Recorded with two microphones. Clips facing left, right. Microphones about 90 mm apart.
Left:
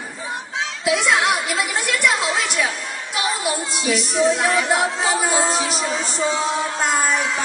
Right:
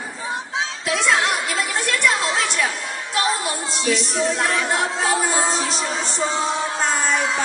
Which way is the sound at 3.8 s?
5° left (ahead or behind).